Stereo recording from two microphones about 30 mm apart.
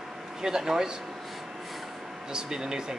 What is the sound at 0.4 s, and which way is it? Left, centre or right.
Speech, centre.